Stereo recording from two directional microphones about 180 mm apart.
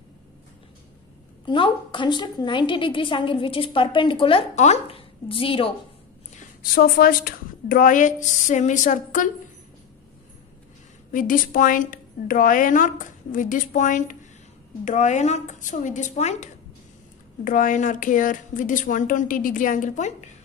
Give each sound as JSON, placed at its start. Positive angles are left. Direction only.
{"t": 1.4, "sound": "a woman's voice", "side_deg": 25}
{"t": 6.6, "sound": "a woman's voice", "side_deg": 55}
{"t": 11.1, "sound": "a woman's voice", "side_deg": 50}
{"t": 17.5, "sound": "a woman's voice", "side_deg": 45}